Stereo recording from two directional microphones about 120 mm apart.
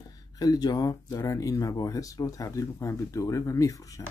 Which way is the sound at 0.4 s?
35° left (ahead or behind).